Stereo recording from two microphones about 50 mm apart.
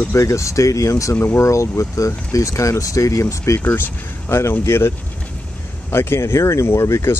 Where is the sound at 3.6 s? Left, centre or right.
Left.